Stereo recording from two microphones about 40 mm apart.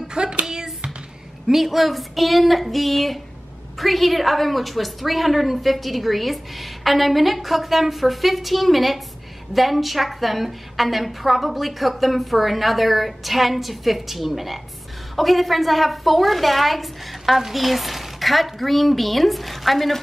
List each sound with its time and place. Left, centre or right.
0.1 s hands: right
1.5 s a woman's voice: centre